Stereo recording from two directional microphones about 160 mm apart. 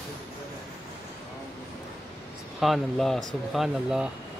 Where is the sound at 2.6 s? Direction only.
Centre (ahead or behind).